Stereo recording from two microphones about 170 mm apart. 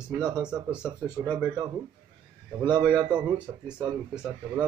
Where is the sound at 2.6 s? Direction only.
25° right (ahead or behind).